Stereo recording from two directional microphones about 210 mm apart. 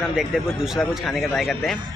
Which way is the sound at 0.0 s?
Centre (ahead or behind).